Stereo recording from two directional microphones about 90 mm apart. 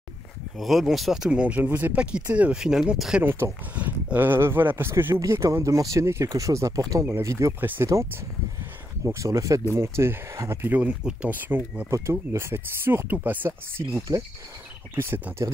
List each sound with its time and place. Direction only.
0.6 s speech: centre (ahead or behind)
3.3 s speech: 25° right (ahead or behind)
7.6 s speech: 20° right (ahead or behind)
9.0 s speech: 35° right (ahead or behind)
10.8 s speech: 15° right (ahead or behind)
11.9 s speech: 35° right (ahead or behind)
13.5 s speech: 30° right (ahead or behind)